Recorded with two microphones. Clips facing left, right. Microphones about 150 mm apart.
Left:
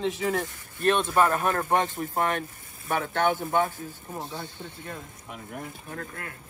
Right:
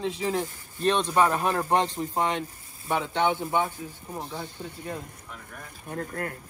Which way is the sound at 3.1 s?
15° right (ahead or behind).